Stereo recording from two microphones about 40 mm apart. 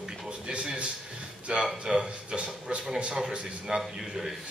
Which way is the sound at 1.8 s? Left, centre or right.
Right.